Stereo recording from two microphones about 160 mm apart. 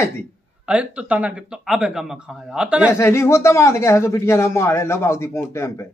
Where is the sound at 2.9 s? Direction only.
15° left (ahead or behind).